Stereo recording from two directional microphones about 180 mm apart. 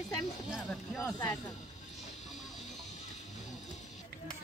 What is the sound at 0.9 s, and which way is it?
Speech, 15° left (ahead or behind).